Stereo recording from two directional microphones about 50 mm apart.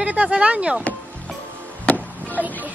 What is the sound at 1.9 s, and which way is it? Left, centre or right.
Chop, left.